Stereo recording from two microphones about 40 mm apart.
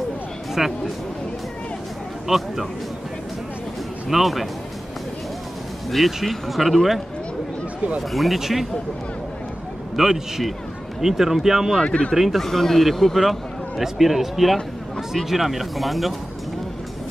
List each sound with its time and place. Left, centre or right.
0.6 s speech: centre
2.2 s speech: centre
4.1 s speech: centre
5.9 s speech: centre
8.1 s speech: centre
9.9 s speech: centre
11.8 s speech: left
12.1 s speech: centre
12.4 s speech: centre